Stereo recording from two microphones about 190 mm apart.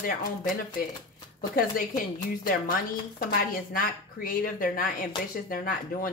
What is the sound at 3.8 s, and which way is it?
Speech, 45° left (ahead or behind).